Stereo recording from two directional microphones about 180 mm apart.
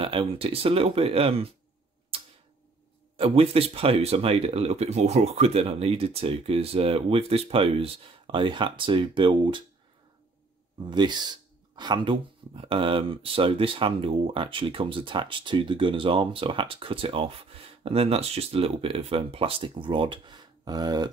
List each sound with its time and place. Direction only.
0.0 s speech: 30° right (ahead or behind)
3.2 s speech: 35° right (ahead or behind)
10.9 s speech: 25° right (ahead or behind)